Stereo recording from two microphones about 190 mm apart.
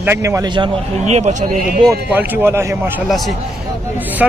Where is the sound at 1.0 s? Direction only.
35° right (ahead or behind).